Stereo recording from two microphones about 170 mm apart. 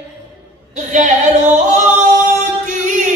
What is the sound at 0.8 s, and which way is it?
Female singing, 45° right (ahead or behind).